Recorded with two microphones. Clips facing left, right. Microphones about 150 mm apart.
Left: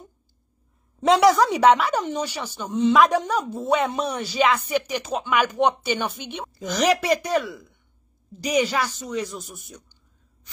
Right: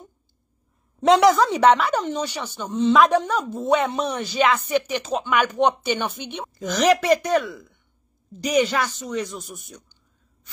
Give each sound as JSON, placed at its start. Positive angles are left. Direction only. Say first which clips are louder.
{"t": 1.0, "sound": "a woman's voice", "louder": "right 1 dB", "side_deg": 0}
{"t": 4.5, "sound": "speech", "louder": "right 1 dB", "side_deg": -45}
{"t": 5.0, "sound": "a woman's voice", "louder": "right 1 dB", "side_deg": 10}